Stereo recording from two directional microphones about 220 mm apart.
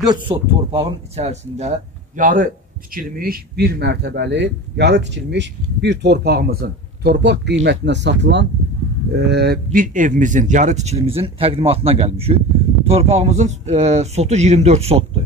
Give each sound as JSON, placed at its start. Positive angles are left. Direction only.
{"t": 0.0, "sound": "speech", "side_deg": -20}